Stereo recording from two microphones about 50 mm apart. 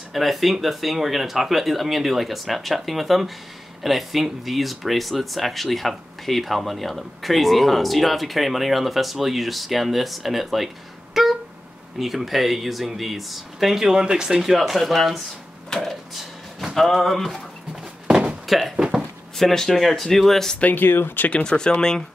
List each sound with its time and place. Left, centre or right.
0.1 s speech: centre
11.2 s a sound: centre
12.0 s speech: centre
18.0 s a sound: centre
19.3 s speech: centre
20.6 s speech: left
21.3 s speech: centre